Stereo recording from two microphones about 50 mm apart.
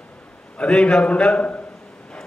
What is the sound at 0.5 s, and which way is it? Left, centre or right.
A man's voice, left.